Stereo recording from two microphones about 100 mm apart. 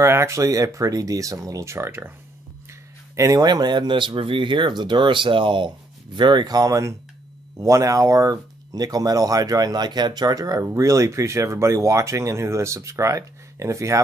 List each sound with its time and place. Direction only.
0.0 s speech: 25° right (ahead or behind)
3.2 s speech: 35° right (ahead or behind)